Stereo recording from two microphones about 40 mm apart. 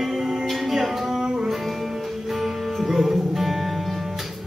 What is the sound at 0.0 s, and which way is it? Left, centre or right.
Music, centre.